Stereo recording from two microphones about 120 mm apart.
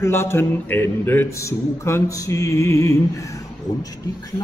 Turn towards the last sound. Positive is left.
turn(degrees=25)  # may be behind; listen again after turning